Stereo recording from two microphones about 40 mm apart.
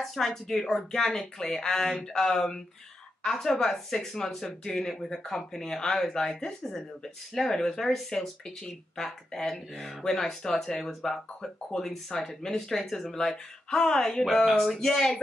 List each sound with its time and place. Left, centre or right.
0.0 s speech: centre
4.9 s speech: centre